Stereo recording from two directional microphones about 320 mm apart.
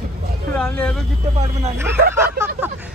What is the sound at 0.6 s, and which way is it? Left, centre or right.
Speech, centre.